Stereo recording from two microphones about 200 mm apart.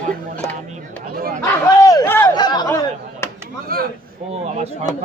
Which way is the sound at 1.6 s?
15° left (ahead or behind).